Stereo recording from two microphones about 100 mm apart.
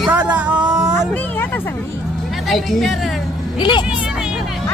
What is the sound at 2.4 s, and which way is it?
Speech, centre (ahead or behind).